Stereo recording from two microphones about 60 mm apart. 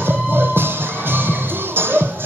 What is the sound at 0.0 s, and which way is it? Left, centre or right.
Music, right.